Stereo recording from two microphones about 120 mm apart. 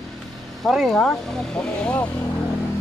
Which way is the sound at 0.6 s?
Centre (ahead or behind).